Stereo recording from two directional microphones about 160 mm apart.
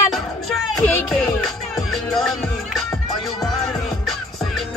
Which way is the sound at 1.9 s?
Centre (ahead or behind).